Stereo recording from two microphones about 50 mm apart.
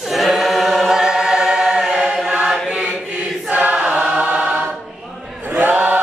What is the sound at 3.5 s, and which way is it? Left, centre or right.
Choir, right.